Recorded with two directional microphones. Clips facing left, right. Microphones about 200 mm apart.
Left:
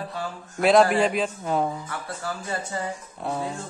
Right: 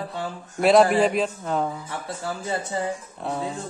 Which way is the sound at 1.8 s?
20° right (ahead or behind).